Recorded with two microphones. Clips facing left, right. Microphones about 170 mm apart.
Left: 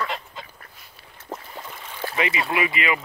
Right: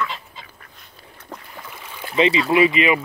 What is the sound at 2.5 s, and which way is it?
Speech, 20° right (ahead or behind).